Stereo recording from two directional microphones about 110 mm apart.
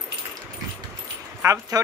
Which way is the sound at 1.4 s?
30° right (ahead or behind).